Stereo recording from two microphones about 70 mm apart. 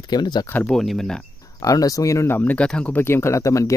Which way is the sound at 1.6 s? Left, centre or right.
Left.